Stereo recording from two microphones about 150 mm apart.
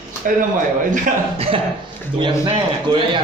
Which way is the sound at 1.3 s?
40° right (ahead or behind).